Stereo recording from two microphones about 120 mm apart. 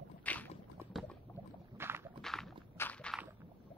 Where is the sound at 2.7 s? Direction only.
20° left (ahead or behind).